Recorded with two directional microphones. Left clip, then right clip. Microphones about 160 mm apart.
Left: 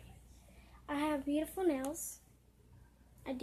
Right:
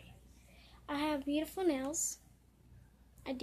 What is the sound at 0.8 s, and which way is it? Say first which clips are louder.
Speech: even; centre (ahead or behind).